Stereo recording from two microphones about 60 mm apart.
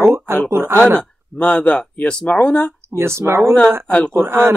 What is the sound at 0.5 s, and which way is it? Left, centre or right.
Speech, right.